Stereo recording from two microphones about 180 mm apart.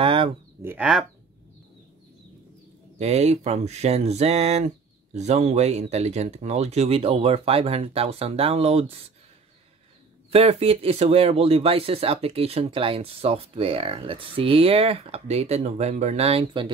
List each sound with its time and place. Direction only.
0.0 s a sound: 30° right (ahead or behind)
0.6 s speech: 10° right (ahead or behind)
3.0 s speech: 35° right (ahead or behind)
10.3 s speech: 35° right (ahead or behind)